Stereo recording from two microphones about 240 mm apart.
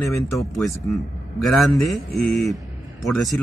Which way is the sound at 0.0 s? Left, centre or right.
Centre.